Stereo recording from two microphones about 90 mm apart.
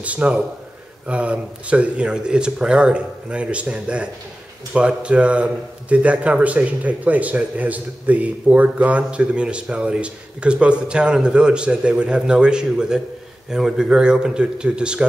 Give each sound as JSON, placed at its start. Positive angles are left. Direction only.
{"t": 0.0, "sound": "a man's voice", "side_deg": -15}